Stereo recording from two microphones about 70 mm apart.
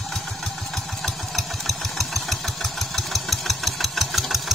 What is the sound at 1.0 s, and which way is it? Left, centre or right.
Engine, centre.